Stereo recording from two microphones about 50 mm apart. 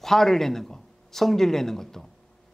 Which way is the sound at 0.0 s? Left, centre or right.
Centre.